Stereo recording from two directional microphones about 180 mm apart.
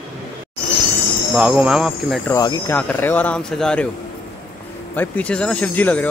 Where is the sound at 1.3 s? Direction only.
5° right (ahead or behind).